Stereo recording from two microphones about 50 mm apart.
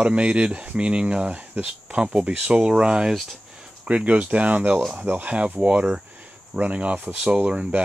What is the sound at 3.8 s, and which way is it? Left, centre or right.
Speech, right.